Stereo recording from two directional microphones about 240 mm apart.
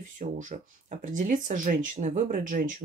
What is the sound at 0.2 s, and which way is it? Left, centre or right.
Speech, right.